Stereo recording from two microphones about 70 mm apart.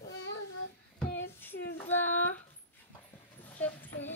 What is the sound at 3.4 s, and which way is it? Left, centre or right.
Dog, left.